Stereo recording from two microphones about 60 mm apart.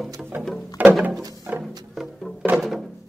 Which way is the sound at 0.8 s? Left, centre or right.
Right.